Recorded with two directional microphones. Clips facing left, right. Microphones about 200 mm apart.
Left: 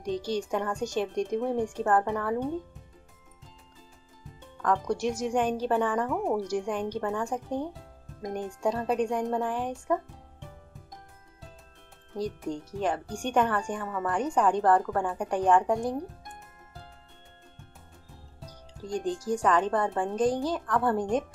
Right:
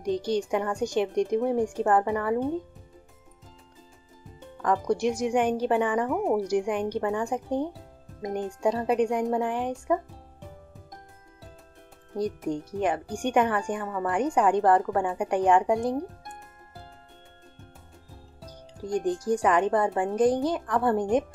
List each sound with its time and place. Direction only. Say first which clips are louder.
0.3 s speech: right 2 dB; 10° right (ahead or behind)
4.6 s speech: right 2 dB; 10° right (ahead or behind)
12.1 s speech: right 4 dB; 15° right (ahead or behind)
18.8 s speech: right 4 dB; 15° right (ahead or behind)